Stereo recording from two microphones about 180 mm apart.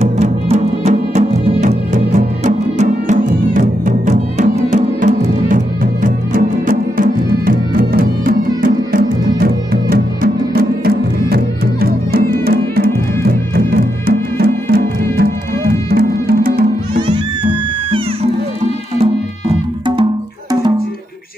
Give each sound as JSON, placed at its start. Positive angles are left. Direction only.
{"t": 0.0, "sound": "music", "side_deg": -35}